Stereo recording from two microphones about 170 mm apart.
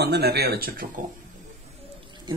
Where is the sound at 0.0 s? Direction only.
70° right (ahead or behind).